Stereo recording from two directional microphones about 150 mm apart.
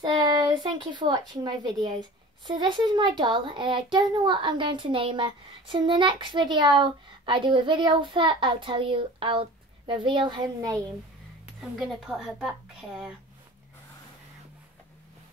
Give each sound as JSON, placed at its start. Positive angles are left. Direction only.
{"t": 0.0, "sound": "speech", "side_deg": -30}
{"t": 11.9, "sound": "a woman's voice", "side_deg": 0}